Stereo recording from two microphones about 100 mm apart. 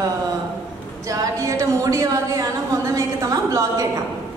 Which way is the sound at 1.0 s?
35° right (ahead or behind).